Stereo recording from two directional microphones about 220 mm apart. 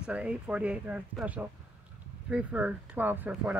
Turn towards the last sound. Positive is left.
turn(degrees=-10)  # may be behind; listen again after turning